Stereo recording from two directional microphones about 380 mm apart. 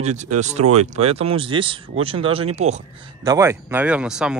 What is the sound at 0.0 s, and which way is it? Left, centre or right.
Speech, centre.